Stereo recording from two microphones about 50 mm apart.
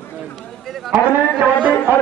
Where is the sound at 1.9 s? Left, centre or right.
Right.